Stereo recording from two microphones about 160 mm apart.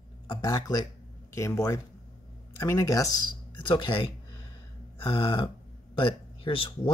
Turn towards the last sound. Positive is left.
turn(degrees=30)  # may be behind; listen again after turning